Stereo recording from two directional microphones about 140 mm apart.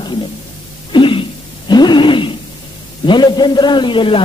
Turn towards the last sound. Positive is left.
turn(degrees=35)  # may be behind; listen again after turning